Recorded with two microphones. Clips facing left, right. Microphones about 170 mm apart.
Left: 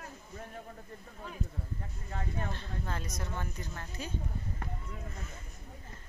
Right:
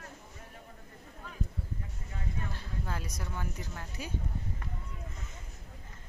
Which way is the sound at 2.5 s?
10° right (ahead or behind).